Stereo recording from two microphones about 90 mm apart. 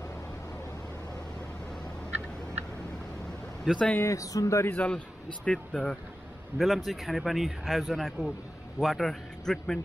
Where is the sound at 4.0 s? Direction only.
35° left (ahead or behind).